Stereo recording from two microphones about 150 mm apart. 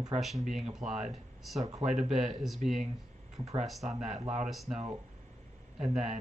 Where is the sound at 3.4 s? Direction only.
45° right (ahead or behind).